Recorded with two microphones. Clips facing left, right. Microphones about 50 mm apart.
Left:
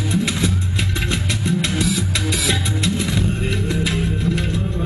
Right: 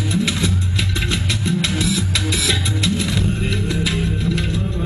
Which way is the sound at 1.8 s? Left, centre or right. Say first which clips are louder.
Even; left.